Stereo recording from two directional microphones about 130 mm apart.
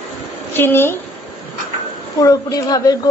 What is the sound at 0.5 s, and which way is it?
Speech, 15° left (ahead or behind).